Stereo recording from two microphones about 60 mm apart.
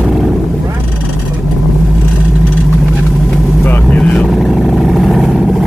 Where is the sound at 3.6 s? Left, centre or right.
Left.